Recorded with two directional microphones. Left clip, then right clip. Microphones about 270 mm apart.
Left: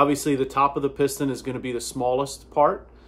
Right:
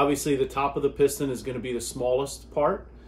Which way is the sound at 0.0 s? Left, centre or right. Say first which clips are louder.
Left 3 dB; centre.